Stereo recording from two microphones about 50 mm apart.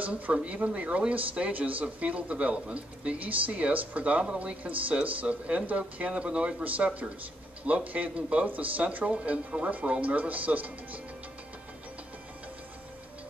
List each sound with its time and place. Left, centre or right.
0.0 s speech: right